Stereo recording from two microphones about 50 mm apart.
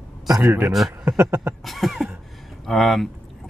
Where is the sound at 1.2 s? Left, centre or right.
Right.